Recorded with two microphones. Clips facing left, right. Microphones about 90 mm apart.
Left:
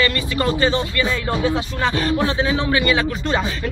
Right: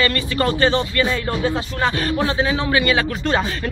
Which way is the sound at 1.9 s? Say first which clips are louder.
Left 1 dB; 25° left (ahead or behind).